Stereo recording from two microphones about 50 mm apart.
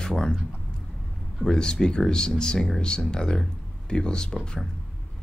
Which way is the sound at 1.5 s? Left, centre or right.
Centre.